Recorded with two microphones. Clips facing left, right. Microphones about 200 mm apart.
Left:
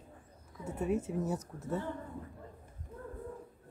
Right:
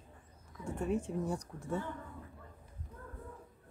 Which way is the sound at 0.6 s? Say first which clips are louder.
Left 2 dB; 5° left (ahead or behind).